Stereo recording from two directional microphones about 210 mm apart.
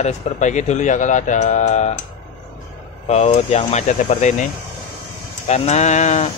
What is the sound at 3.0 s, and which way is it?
Speech, 30° left (ahead or behind).